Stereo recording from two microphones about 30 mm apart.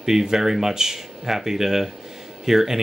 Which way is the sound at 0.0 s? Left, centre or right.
Centre.